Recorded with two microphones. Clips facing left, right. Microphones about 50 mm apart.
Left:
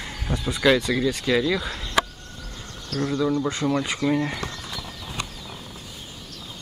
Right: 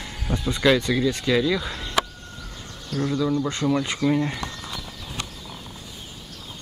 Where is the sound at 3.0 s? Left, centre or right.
Centre.